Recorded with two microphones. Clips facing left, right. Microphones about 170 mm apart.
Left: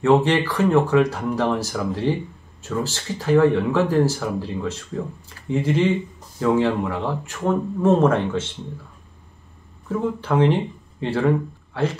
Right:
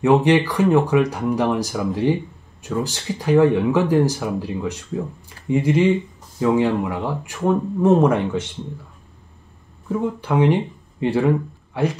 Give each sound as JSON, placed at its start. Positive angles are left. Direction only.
{"t": 0.0, "sound": "speech", "side_deg": -15}
{"t": 9.8, "sound": "a man's voice", "side_deg": -15}